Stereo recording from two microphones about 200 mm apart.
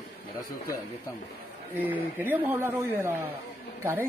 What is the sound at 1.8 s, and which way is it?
A man's voice, 10° right (ahead or behind).